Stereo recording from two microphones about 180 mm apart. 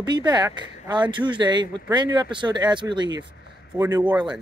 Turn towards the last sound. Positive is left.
turn(degrees=-20)  # may be behind; listen again after turning